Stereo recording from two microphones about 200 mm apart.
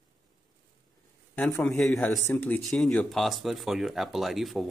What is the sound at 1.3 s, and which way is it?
Speech, 5° left (ahead or behind).